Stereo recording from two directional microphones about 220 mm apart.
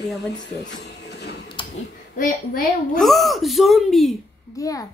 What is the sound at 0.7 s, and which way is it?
Music, 50° left (ahead or behind).